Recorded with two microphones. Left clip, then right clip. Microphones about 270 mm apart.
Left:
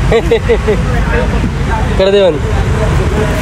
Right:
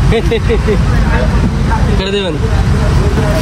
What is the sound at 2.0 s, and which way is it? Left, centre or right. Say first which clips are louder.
Speech: left 12 dB; centre.